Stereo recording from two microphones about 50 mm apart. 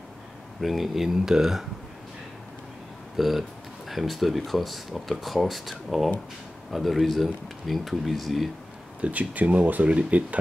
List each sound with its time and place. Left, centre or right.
0.6 s speech: centre
3.2 s speech: centre
9.0 s speech: right